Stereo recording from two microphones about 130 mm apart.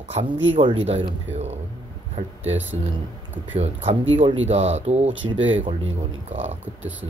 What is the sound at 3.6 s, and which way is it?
Speech, 55° right (ahead or behind).